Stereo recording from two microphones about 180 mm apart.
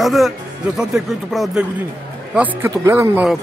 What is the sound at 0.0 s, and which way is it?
Speech, centre (ahead or behind).